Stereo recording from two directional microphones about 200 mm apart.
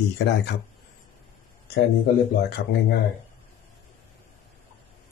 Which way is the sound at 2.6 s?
55° left (ahead or behind).